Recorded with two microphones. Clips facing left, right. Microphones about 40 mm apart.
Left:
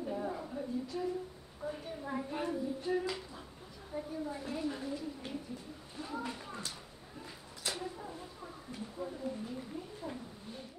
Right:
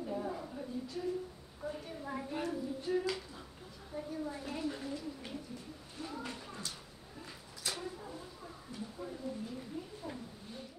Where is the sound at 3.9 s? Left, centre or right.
Centre.